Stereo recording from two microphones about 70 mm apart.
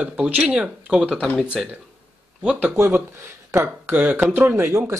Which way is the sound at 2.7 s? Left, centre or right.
Right.